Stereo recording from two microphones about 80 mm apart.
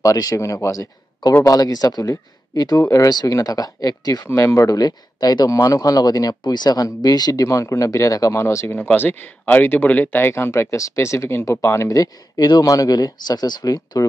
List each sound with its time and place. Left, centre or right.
0.0 s speech: left
2.8 s speech: left
3.1 s speech: left
4.3 s speech: left
6.4 s speech: left
7.4 s speech: left
8.7 s speech: left
12.0 s speech: left